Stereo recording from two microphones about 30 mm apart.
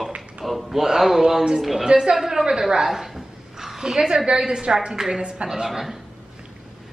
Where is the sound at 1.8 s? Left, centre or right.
Right.